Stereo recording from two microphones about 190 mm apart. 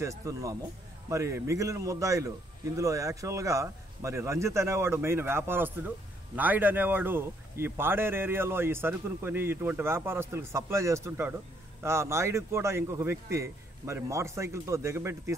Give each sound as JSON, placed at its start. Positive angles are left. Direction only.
{"t": 0.0, "sound": "a man's voice", "side_deg": -15}